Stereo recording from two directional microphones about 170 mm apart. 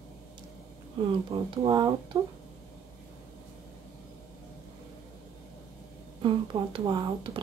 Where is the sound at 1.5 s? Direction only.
25° right (ahead or behind).